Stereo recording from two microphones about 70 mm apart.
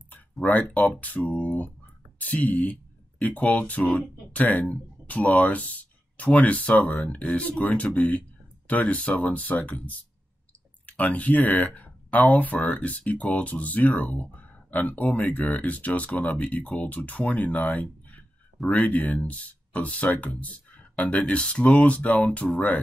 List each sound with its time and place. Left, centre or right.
0.1 s speech: left